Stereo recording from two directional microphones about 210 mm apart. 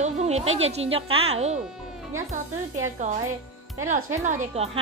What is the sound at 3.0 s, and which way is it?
Speech, 35° right (ahead or behind).